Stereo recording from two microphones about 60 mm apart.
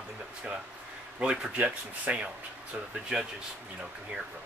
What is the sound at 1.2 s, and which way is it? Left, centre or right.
Speech, centre.